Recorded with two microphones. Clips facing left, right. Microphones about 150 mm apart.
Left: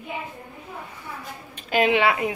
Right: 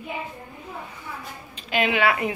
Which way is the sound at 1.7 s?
35° left (ahead or behind).